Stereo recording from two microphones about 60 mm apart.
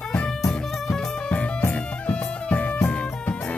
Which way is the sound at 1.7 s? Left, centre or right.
Left.